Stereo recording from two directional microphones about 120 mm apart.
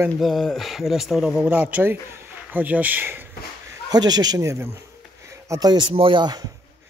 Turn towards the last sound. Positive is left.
turn(degrees=-40)  # may be behind; listen again after turning